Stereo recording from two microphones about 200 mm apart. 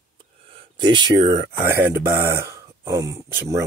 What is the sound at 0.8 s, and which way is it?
Speech, 20° right (ahead or behind).